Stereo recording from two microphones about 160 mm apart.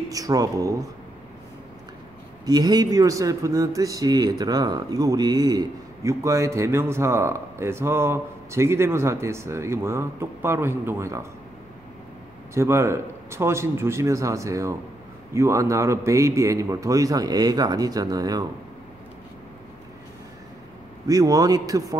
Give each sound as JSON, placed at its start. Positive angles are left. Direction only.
{"t": 0.1, "sound": "a man's voice", "side_deg": -20}
{"t": 2.4, "sound": "speech", "side_deg": -25}
{"t": 12.5, "sound": "a man's voice", "side_deg": -15}
{"t": 21.1, "sound": "a man's voice", "side_deg": -25}